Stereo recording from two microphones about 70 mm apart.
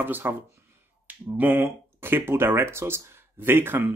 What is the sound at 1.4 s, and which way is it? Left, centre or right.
Speech, right.